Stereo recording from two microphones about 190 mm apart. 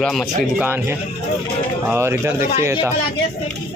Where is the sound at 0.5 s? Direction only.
10° right (ahead or behind).